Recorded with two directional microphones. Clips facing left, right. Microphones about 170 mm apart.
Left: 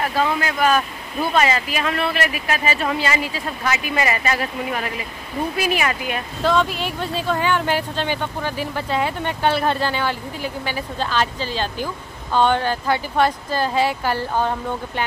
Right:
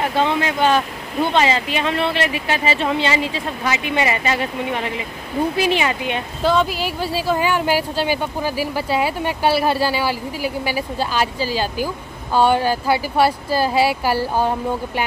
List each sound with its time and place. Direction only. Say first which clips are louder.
0.0 s speech: right 2 dB; 25° right (ahead or behind)
6.4 s speech: right 1 dB; centre (ahead or behind)